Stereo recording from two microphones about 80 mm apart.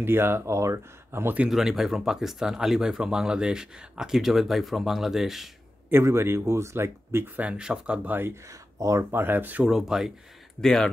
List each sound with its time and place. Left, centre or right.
0.0 s speech: right
1.2 s speech: centre
1.5 s speech: centre
5.9 s speech: right
7.4 s speech: centre
8.7 s speech: right
9.1 s speech: right
9.7 s speech: centre
10.6 s speech: centre